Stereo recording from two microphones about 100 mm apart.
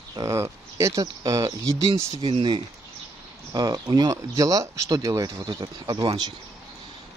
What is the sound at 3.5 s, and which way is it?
Speech, 40° right (ahead or behind).